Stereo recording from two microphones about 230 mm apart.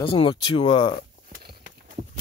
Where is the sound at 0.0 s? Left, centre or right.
Left.